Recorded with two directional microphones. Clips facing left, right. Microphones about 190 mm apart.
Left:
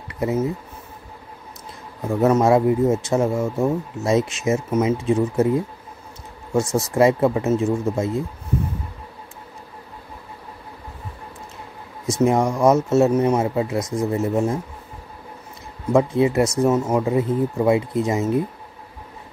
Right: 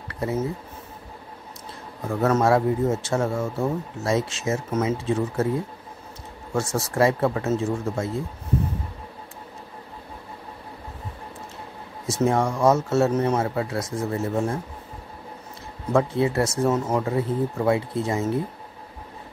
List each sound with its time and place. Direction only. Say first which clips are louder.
0.1 s speech: left 4 dB; 15° left (ahead or behind)
2.0 s a man's voice: left 4 dB; 15° left (ahead or behind)
6.5 s speech: left 5 dB; 20° left (ahead or behind)
12.2 s a man's voice: left 3 dB; 15° left (ahead or behind)
15.9 s a man's voice: left 4 dB; 15° left (ahead or behind)